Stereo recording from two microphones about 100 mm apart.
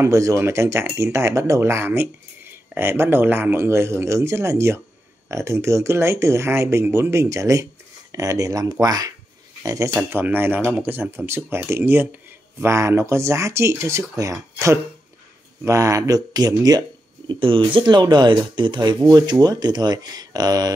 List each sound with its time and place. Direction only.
0.0 s speech: 30° right (ahead or behind)
10.0 s speech: 20° right (ahead or behind); by 16.8 s 40° right (ahead or behind)
17.3 s speech: 60° right (ahead or behind); by 20.7 s 40° right (ahead or behind)